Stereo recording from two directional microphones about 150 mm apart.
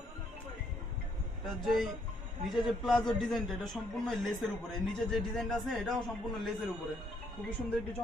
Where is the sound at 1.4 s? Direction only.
Centre (ahead or behind).